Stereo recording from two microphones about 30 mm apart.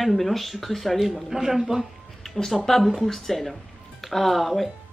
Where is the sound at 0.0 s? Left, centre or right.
Centre.